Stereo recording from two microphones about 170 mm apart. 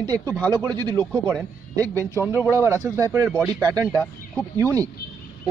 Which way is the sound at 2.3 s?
15° right (ahead or behind).